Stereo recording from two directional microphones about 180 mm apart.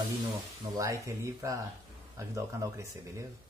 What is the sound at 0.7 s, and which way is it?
Speech, 20° right (ahead or behind).